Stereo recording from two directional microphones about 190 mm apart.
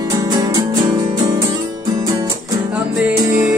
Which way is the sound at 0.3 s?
20° right (ahead or behind).